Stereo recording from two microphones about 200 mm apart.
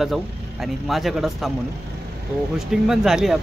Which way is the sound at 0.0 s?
Centre (ahead or behind).